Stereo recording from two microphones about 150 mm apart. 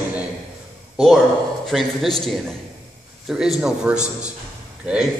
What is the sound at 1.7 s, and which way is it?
Speech, centre (ahead or behind).